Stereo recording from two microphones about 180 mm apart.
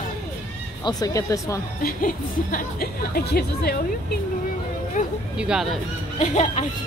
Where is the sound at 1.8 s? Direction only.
50° left (ahead or behind).